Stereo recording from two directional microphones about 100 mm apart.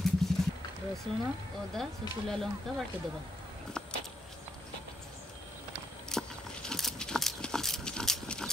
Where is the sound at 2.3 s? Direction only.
5° left (ahead or behind).